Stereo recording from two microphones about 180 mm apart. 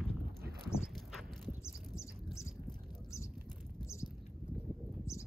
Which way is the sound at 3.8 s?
15° left (ahead or behind).